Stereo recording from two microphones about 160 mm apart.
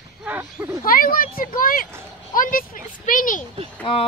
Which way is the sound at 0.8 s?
65° left (ahead or behind).